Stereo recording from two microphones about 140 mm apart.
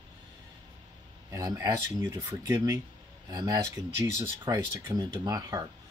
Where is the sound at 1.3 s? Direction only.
20° right (ahead or behind).